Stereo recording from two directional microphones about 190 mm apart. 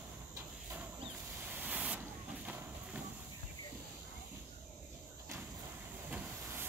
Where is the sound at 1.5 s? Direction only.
5° right (ahead or behind).